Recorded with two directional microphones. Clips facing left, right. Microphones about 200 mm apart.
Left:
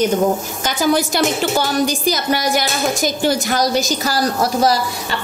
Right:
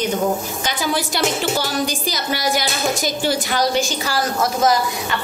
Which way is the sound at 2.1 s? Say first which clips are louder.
Left 4 dB; 50° left (ahead or behind).